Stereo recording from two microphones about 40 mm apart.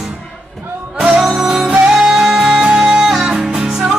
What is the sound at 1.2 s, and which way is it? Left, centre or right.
Music, centre.